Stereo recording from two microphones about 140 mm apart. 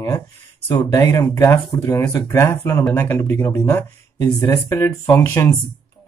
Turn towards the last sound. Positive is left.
turn(degrees=15)  # may be behind; listen again after turning